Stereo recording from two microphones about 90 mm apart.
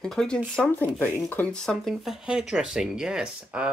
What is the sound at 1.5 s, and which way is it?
Speech, 10° left (ahead or behind).